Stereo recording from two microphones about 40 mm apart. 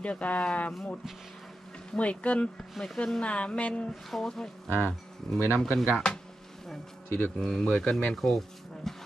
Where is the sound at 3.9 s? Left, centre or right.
Centre.